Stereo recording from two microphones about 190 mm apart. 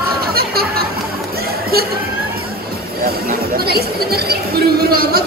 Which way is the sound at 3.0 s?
55° right (ahead or behind).